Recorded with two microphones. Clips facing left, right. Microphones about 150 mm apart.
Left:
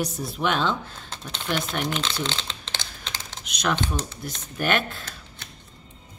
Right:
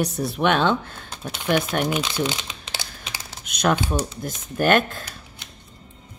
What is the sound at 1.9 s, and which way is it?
Crumpling, 10° right (ahead or behind).